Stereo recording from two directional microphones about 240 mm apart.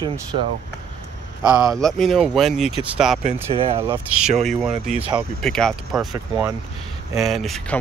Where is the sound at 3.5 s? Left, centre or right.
Right.